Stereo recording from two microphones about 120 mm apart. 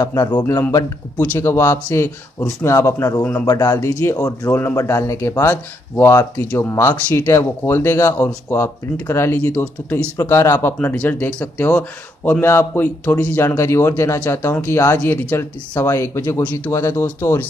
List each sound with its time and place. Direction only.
0.0 s speech: 35° left (ahead or behind)
1.1 s speech: 15° left (ahead or behind)